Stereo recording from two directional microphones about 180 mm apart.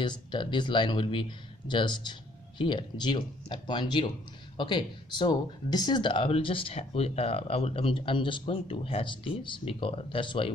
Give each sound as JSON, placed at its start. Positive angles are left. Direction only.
{"t": 0.0, "sound": "speech", "side_deg": 25}